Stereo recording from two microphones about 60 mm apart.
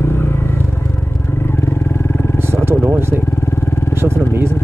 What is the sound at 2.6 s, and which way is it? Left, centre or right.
Speech, right.